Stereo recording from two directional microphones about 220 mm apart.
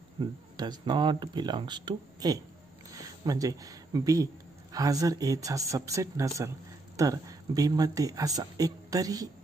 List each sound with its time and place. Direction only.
0.2 s speech: 20° right (ahead or behind)